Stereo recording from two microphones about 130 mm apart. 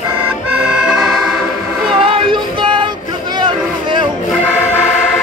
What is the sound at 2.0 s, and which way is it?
Music, 40° right (ahead or behind).